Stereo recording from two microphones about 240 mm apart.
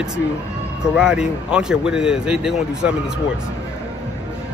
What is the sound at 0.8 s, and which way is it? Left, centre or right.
Speech, centre.